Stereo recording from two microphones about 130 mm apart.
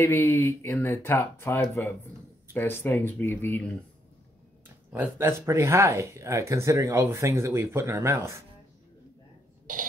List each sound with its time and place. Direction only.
0.0 s speech: 20° left (ahead or behind)
4.9 s speech: 20° right (ahead or behind)